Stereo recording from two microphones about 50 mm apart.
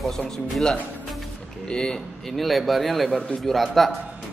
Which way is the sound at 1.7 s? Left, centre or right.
Centre.